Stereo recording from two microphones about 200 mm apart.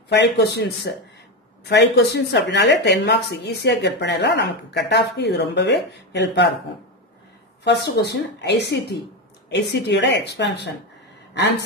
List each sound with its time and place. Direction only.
0.1 s a woman's voice: 55° left (ahead or behind)
7.6 s a woman's voice: 55° left (ahead or behind)